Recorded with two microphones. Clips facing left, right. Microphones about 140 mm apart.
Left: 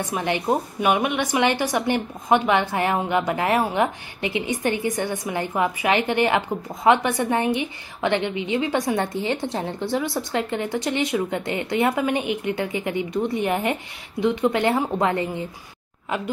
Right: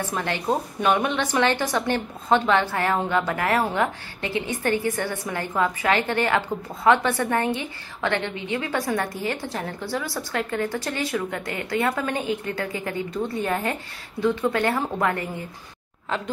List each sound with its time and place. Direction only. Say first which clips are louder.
0.0 s a woman's voice: left 2 dB; 15° left (ahead or behind)